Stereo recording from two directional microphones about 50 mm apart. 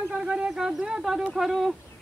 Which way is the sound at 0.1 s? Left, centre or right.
Centre.